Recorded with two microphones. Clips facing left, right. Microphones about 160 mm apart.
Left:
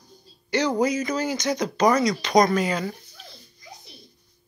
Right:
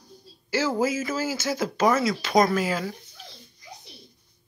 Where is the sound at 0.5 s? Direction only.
5° right (ahead or behind).